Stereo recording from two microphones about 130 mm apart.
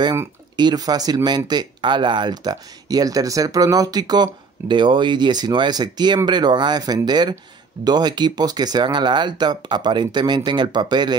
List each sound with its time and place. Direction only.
0.6 s speech: 30° right (ahead or behind)